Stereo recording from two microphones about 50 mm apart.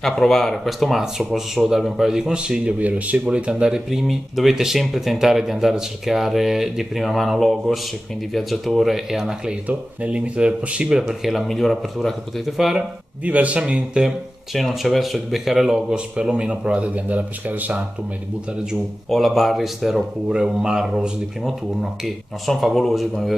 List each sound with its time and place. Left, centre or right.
0.0 s speech: centre
4.1 s speech: centre
9.7 s speech: right
11.0 s speech: centre
13.2 s speech: right
14.0 s speech: centre
15.9 s speech: right
19.0 s speech: centre